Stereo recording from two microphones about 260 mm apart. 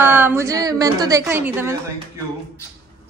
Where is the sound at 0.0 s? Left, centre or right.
Centre.